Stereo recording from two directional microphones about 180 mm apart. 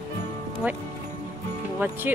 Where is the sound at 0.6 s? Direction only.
5° right (ahead or behind).